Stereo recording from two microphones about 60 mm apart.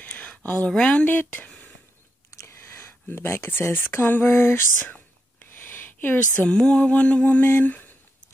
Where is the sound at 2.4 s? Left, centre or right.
Left.